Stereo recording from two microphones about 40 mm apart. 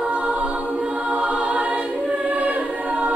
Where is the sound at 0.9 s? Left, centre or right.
Right.